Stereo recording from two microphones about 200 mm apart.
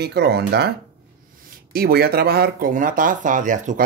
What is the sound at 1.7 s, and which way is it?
Speech, 50° right (ahead or behind).